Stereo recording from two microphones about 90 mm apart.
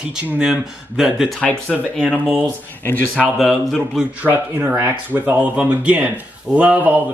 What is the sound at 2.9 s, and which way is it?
Speech, 20° left (ahead or behind).